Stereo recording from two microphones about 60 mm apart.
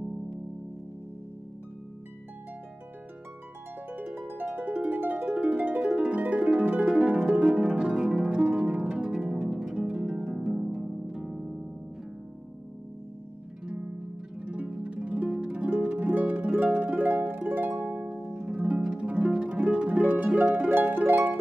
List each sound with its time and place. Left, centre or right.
3.9 s harp: right
4.6 s music: right
5.9 s harp: right; by 11.6 s centre
14.4 s harp: centre
16.5 s music: right
17.1 s music: right
17.8 s harp: right
20.7 s music: right